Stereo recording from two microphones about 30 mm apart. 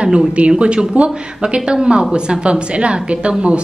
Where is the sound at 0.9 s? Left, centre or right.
Right.